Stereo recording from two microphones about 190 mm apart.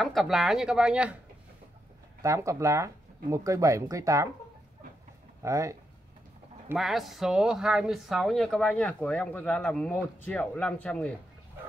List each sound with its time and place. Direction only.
0.0 s speech: centre (ahead or behind)
2.2 s speech: 15° right (ahead or behind)
5.4 s speech: 15° right (ahead or behind)
6.7 s speech: centre (ahead or behind)